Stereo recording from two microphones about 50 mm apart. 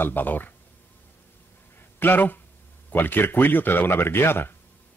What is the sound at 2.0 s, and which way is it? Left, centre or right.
Speech, left.